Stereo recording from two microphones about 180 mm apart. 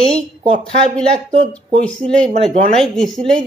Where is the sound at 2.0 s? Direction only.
5° left (ahead or behind).